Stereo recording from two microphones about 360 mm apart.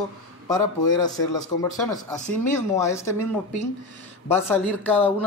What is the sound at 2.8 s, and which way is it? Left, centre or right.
Speech, centre.